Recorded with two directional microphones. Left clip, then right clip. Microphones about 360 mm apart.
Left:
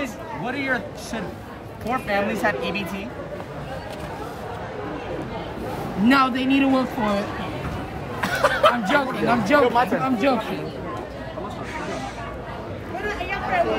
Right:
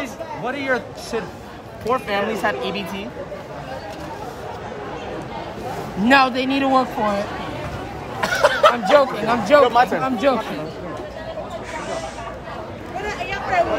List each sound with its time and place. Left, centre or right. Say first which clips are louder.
0.0 s a man's voice: right 2 dB; centre
6.0 s a man's voice: right 4 dB; centre
8.2 s a sound: right 3 dB; right
8.9 s a man's voice: right 5 dB; centre
9.6 s speech: right 5 dB; right
10.0 s a man's voice: right 2 dB; centre